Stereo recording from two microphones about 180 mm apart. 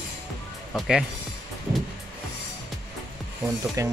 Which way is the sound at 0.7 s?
Centre (ahead or behind).